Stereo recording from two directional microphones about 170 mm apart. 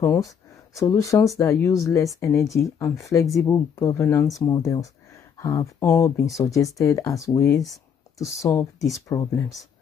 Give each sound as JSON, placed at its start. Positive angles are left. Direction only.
{"t": 0.0, "sound": "speech", "side_deg": 20}